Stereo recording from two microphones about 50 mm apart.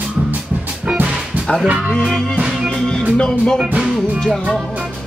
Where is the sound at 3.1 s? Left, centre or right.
Left.